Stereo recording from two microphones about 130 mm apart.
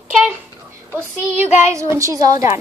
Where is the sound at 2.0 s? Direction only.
25° right (ahead or behind).